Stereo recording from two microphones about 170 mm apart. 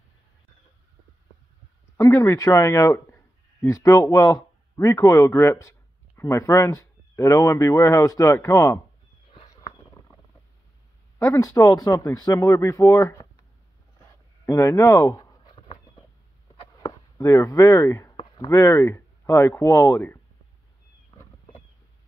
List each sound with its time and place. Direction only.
2.0 s speech: 15° left (ahead or behind)
11.1 s speech: 20° left (ahead or behind)
14.4 s a sound: 15° left (ahead or behind)
16.7 s chop: 20° left (ahead or behind)
18.1 s speech: 25° left (ahead or behind)